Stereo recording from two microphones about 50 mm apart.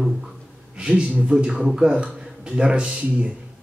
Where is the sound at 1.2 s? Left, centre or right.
Right.